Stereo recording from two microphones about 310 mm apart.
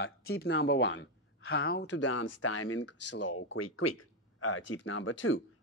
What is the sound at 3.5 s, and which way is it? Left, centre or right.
Speech, left.